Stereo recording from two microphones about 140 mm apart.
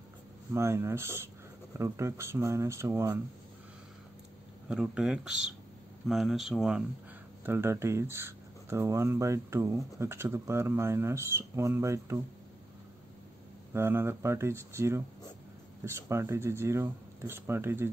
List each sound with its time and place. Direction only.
0.5 s speech: 20° right (ahead or behind)
4.6 s speech: 5° right (ahead or behind)
7.4 s speech: 15° right (ahead or behind)
13.7 s speech: 15° right (ahead or behind)